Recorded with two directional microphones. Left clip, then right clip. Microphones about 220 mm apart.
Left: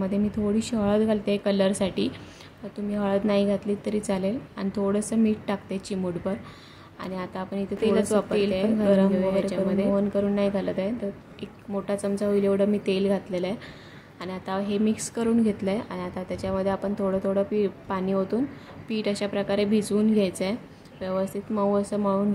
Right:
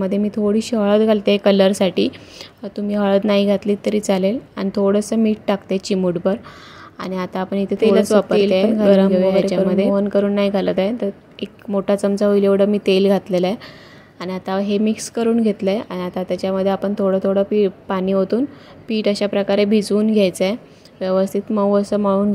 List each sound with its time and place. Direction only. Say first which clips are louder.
0.0 s a woman's voice: right 8 dB; 30° right (ahead or behind)